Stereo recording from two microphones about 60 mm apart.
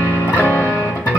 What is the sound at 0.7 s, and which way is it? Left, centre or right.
Music, left.